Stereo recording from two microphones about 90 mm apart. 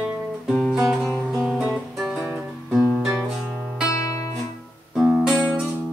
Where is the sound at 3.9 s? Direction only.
35° left (ahead or behind).